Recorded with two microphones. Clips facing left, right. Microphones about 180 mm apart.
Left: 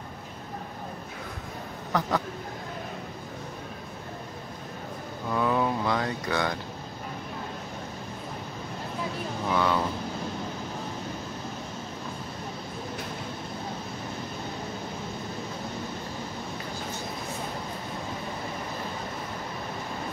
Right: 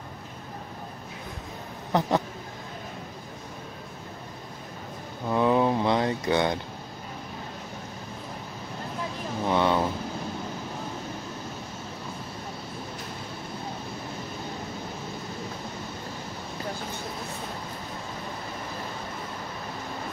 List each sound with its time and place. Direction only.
1.9 s speech: 20° right (ahead or behind)
5.3 s a sound: 20° right (ahead or behind)
9.5 s vehicle: 25° right (ahead or behind)